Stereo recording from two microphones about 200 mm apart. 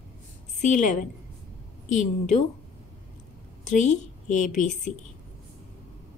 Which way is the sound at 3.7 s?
40° left (ahead or behind).